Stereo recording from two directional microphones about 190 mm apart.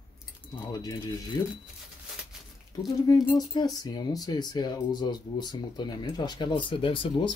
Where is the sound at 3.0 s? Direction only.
20° left (ahead or behind).